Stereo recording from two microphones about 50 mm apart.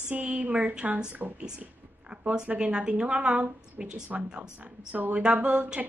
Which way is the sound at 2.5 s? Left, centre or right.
Right.